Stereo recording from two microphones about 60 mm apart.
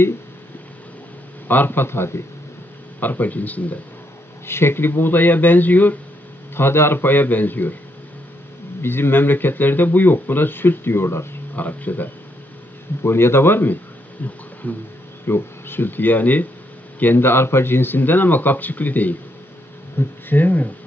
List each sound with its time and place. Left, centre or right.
1.5 s speech: left
3.0 s speech: left
4.5 s speech: left
6.5 s speech: left
8.8 s speech: left
11.5 s speech: left
13.0 s speech: left
15.2 s speech: left